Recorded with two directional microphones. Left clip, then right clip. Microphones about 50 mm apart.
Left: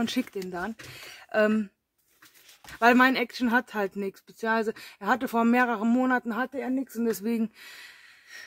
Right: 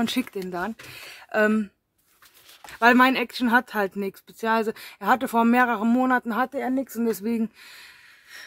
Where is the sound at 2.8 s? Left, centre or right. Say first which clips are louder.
Right 3 dB; right.